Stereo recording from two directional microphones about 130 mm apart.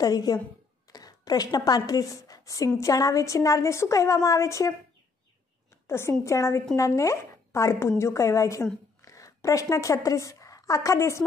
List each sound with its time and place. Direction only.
0.0 s a woman's voice: 30° left (ahead or behind)
5.9 s a woman's voice: 20° left (ahead or behind)